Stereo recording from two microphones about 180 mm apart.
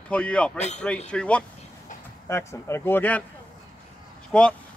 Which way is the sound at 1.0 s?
5° left (ahead or behind).